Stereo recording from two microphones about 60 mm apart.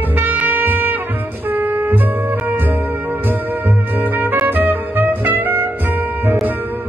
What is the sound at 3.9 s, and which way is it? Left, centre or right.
Music, right.